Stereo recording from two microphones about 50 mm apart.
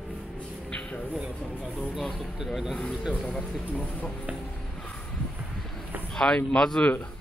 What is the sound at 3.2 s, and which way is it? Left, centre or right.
Speech, centre.